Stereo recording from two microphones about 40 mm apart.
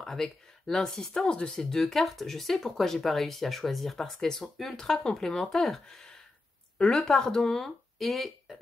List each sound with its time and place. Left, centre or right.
0.0 s speech: centre
1.2 s speech: left
1.5 s speech: centre
6.8 s speech: left
8.0 s speech: centre